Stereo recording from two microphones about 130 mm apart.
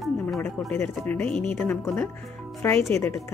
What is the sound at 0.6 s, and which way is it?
Speech, 10° left (ahead or behind).